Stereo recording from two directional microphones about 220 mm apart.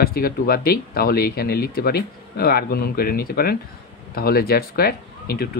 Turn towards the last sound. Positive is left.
turn(degrees=45)  # may be behind; listen again after turning